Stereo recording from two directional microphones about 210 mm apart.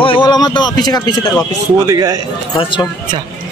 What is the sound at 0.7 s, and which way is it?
Speech, 20° left (ahead or behind).